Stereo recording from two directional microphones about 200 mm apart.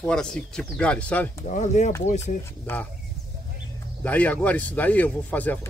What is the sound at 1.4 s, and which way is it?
Speech, 40° left (ahead or behind).